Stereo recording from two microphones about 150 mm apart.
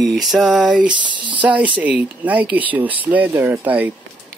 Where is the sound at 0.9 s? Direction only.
30° right (ahead or behind).